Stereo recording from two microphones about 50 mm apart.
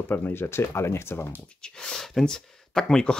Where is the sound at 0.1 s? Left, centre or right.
Left.